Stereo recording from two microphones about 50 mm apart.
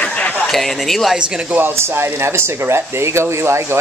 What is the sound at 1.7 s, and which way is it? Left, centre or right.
Speech, right.